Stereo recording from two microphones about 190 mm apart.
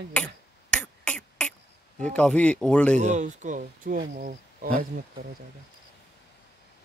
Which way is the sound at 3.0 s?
40° right (ahead or behind).